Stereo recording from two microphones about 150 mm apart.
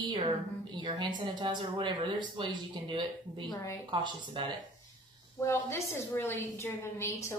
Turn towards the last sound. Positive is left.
turn(degrees=20)  # may be behind; listen again after turning